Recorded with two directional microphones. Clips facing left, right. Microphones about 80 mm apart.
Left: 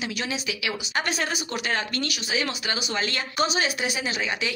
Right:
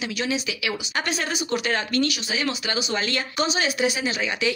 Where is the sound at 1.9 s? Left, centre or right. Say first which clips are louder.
Right 4 dB; left.